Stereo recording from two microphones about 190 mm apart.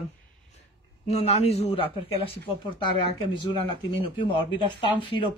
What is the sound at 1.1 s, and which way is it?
Speech, 35° left (ahead or behind).